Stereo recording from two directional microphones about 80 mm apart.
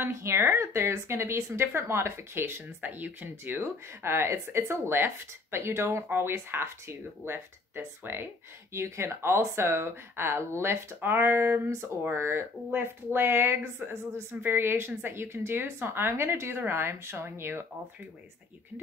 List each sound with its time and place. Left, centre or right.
0.0 s speech: right